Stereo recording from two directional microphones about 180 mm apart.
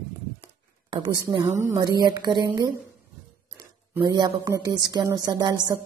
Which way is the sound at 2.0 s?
20° right (ahead or behind).